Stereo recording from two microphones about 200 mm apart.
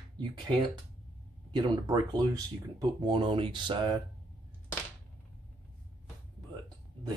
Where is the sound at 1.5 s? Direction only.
20° right (ahead or behind).